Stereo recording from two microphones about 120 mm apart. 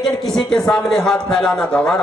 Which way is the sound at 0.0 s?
5° left (ahead or behind).